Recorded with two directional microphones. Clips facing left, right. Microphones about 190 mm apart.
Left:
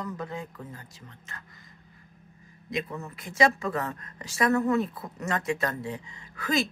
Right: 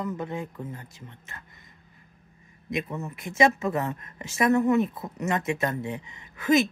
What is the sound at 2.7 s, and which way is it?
A woman's voice, 20° right (ahead or behind).